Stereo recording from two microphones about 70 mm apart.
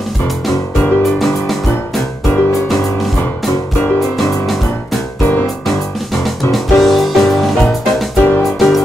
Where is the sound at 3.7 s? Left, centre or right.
Left.